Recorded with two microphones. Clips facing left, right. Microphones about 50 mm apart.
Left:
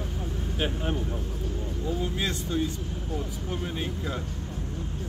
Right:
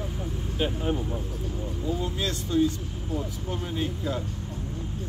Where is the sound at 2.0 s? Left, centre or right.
Centre.